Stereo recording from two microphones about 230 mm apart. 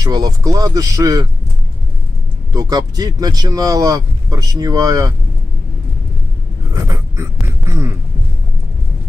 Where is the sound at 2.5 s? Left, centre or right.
Centre.